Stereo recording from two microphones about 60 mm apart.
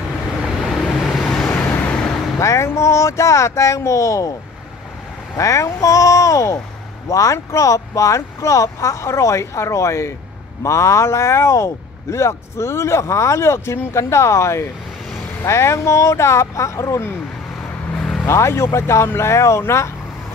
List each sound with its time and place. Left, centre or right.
0.4 s vehicle: centre
1.5 s vehicle: left
2.3 s speech: left
5.4 s speech: left
17.9 s vehicle: centre
18.2 s speech: left